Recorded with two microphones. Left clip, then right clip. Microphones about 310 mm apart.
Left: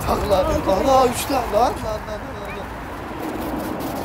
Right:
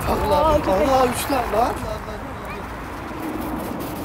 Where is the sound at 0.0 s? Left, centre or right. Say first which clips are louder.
Even; centre.